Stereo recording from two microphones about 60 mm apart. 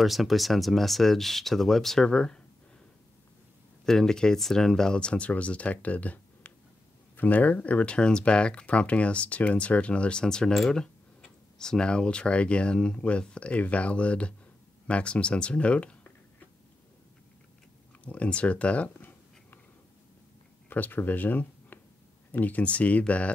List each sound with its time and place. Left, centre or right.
0.0 s speech: centre
3.8 s speech: centre; by 16.4 s left
18.0 s speech: left
18.9 s writing: left
20.7 s speech: left